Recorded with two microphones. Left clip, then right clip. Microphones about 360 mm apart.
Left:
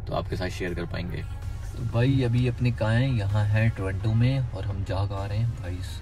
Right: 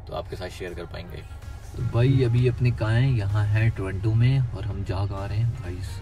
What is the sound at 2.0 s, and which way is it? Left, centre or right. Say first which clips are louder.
Speech: right 3 dB; centre.